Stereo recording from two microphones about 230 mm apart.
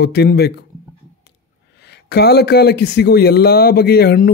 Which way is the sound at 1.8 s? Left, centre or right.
Left.